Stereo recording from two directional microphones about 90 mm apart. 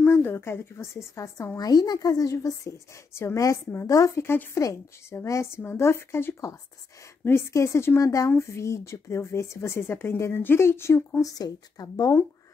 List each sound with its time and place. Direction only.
0.0 s a woman's voice: 25° left (ahead or behind)
1.7 s speech: 45° left (ahead or behind)